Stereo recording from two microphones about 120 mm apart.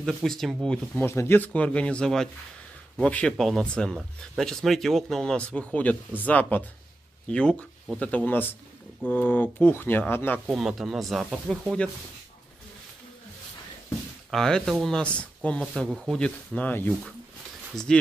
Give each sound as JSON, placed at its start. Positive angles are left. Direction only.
{"t": 0.0, "sound": "speech", "side_deg": 0}
{"t": 1.0, "sound": "speech", "side_deg": 20}
{"t": 10.4, "sound": "speech", "side_deg": -5}
{"t": 14.3, "sound": "speech", "side_deg": 5}